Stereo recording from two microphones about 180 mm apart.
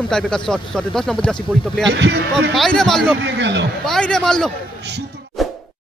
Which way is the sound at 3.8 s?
5° left (ahead or behind).